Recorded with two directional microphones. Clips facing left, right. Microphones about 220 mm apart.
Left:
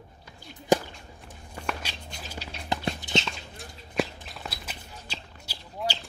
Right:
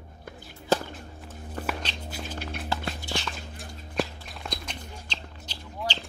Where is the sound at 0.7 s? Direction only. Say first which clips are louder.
Left 3 dB; 15° left (ahead or behind).